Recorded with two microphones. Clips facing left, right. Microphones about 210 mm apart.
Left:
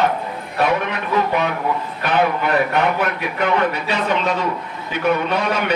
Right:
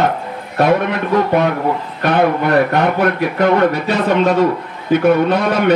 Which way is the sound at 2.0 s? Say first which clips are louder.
Right 5 dB; 50° right (ahead or behind).